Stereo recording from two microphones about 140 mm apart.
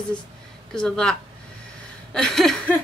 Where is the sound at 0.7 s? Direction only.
5° left (ahead or behind).